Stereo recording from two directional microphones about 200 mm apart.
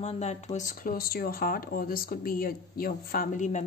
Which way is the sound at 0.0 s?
35° left (ahead or behind).